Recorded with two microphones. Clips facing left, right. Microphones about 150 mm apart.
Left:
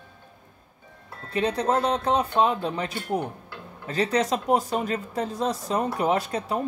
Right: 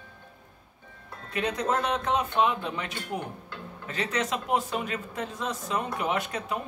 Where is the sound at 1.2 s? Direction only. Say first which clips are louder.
Left 4 dB; 30° left (ahead or behind).